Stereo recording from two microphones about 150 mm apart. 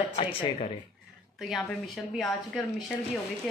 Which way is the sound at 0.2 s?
35° left (ahead or behind).